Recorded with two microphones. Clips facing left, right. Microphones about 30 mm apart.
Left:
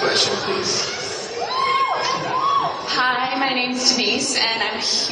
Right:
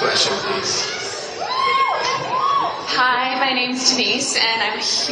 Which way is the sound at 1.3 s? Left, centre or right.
Right.